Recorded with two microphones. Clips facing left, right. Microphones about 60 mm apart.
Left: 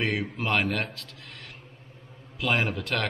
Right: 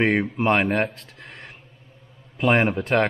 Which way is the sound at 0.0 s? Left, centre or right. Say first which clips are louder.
Right 8 dB; right.